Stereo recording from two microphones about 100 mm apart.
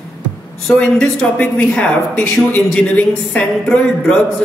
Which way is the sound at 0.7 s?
10° left (ahead or behind).